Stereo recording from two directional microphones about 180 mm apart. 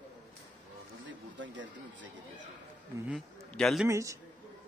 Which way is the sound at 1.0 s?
90° right.